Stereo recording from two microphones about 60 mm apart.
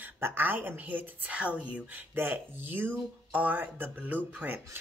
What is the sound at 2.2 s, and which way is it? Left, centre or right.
Speech, right.